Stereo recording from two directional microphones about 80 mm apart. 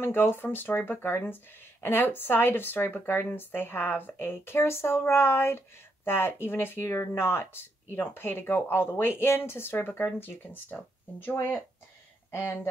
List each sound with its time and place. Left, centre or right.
0.0 s speech: left
12.3 s speech: left